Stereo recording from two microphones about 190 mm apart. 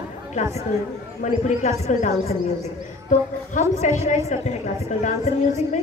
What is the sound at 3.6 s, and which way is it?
A woman's voice, 40° left (ahead or behind).